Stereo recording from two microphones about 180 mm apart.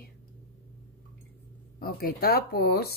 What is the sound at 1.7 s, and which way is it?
Speech, 55° left (ahead or behind).